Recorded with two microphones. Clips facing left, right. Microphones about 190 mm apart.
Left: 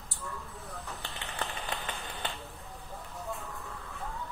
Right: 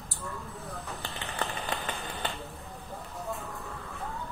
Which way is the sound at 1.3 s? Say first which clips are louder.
Right 3 dB; 45° right (ahead or behind).